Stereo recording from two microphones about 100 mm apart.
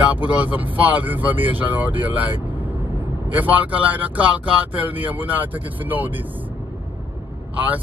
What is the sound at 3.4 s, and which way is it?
Speech, 15° right (ahead or behind).